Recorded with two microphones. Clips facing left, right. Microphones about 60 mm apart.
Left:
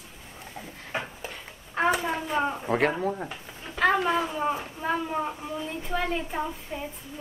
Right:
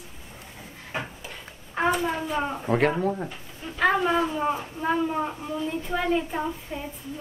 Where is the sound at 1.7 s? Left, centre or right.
Centre.